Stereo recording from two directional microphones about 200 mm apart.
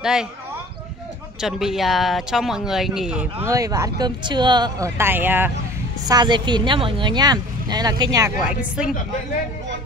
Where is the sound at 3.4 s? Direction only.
15° right (ahead or behind).